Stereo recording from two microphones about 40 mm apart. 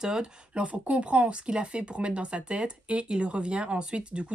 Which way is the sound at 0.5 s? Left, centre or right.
Right.